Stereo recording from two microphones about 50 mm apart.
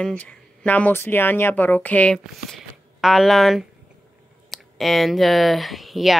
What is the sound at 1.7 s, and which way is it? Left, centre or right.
Speech, left.